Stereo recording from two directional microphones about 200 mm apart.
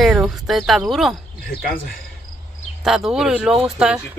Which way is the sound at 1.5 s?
50° left (ahead or behind).